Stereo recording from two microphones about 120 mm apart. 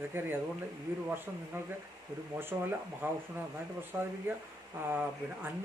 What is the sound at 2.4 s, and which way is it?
A man's voice, 20° right (ahead or behind).